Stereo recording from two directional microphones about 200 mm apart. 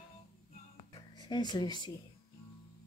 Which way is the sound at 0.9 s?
20° left (ahead or behind).